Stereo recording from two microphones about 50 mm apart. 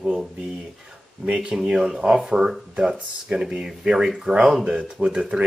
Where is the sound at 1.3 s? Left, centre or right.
Centre.